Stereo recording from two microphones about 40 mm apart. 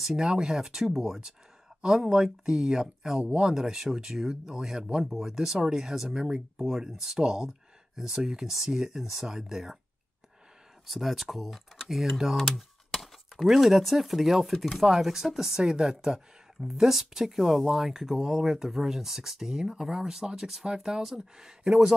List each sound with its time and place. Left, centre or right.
0.1 s speech: centre
10.9 s speech: centre